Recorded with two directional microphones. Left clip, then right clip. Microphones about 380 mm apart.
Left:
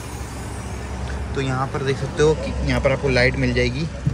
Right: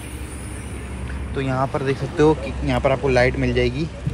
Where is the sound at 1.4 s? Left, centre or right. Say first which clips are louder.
Right 2 dB; centre.